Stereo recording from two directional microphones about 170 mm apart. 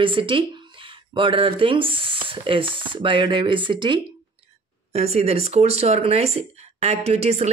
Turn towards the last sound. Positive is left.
turn(degrees=-40)  # may be behind; listen again after turning